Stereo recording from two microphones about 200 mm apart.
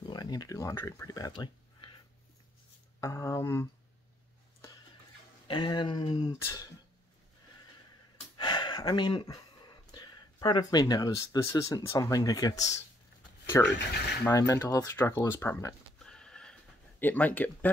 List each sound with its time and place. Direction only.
0.0 s speech: 20° left (ahead or behind)
3.0 s speech: 15° left (ahead or behind)
5.5 s speech: 25° left (ahead or behind)
8.4 s speech: 20° left (ahead or behind)